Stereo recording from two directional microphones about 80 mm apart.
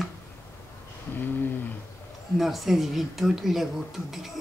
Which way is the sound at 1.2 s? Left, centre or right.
Left.